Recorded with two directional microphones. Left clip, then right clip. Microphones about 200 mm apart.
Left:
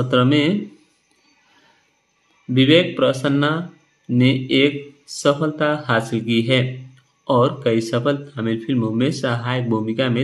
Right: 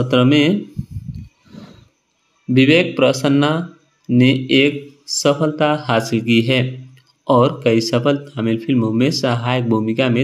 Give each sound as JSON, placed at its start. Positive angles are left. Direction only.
{"t": 0.0, "sound": "speech", "side_deg": -20}
{"t": 2.5, "sound": "speech", "side_deg": -25}